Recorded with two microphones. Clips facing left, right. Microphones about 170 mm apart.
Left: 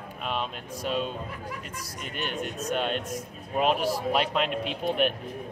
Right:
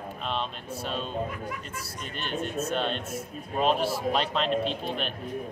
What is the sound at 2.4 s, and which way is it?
Speech, 15° left (ahead or behind).